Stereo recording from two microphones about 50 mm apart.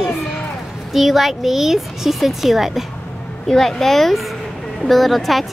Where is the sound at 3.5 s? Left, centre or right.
Centre.